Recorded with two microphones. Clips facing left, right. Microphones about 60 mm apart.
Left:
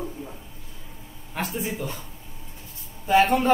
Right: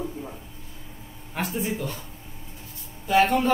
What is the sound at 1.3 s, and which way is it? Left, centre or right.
Speech, centre.